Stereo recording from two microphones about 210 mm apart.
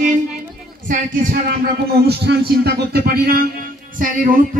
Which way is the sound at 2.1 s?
50° right (ahead or behind).